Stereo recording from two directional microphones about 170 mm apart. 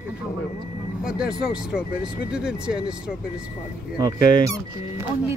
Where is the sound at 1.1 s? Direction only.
5° right (ahead or behind).